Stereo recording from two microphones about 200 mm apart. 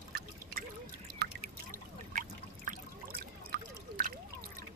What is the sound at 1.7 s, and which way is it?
Trickle, 45° right (ahead or behind).